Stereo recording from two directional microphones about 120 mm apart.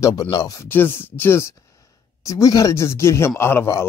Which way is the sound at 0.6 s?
15° left (ahead or behind).